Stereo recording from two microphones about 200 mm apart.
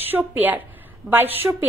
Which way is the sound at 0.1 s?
10° right (ahead or behind).